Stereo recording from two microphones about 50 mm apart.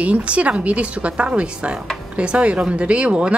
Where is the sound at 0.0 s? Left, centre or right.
Right.